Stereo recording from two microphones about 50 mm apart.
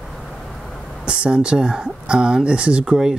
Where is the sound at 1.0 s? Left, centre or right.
Right.